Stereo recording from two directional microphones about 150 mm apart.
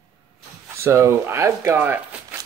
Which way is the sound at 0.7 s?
20° right (ahead or behind).